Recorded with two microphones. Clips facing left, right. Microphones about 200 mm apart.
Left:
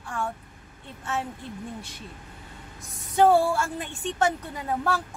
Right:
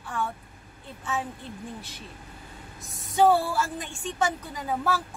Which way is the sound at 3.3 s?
Centre (ahead or behind).